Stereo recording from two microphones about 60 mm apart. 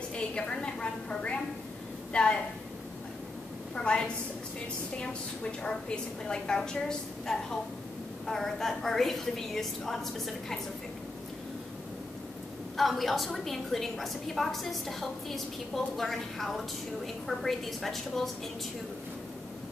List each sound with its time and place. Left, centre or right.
0.1 s a woman's voice: centre
3.7 s a woman's voice: centre
12.7 s a woman's voice: centre